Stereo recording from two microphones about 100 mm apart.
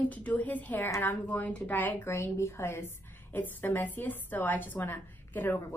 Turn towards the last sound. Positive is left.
turn(degrees=20)  # may be behind; listen again after turning